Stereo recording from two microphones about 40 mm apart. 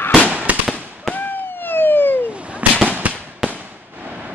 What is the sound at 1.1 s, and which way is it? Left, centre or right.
Police car, left.